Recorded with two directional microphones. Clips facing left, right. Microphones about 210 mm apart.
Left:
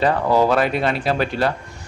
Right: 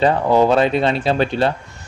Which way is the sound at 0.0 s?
20° right (ahead or behind).